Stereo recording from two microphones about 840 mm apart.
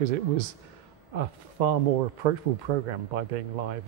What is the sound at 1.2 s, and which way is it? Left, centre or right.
Speech, right.